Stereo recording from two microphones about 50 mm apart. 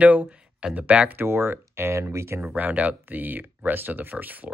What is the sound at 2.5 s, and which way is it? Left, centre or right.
Speech, right.